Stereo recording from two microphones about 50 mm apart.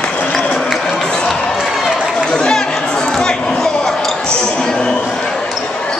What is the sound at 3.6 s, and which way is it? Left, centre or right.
Basketball bounce, centre.